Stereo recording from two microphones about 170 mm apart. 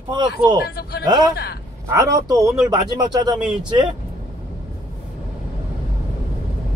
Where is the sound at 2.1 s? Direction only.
20° right (ahead or behind).